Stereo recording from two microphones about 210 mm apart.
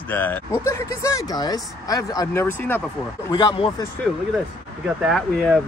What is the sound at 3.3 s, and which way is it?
Speech, 25° left (ahead or behind).